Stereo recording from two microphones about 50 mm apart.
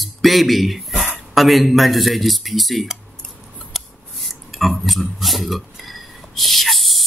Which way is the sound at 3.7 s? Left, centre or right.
Centre.